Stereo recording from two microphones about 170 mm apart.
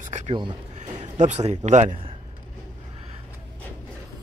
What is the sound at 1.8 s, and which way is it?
Speech, 30° right (ahead or behind).